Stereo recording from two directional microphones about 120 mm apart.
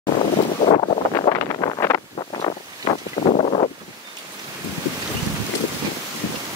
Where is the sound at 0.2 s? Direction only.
55° left (ahead or behind).